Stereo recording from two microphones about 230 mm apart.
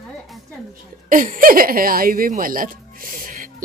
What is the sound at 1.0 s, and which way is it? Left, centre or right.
Speech, right.